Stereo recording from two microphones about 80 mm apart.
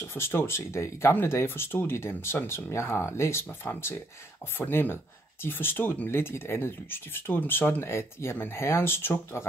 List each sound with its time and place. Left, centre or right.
0.0 s speech: left